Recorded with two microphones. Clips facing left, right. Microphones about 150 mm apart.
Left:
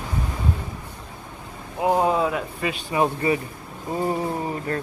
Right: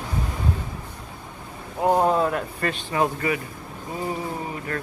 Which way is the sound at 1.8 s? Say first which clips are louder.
Right 1 dB; centre (ahead or behind).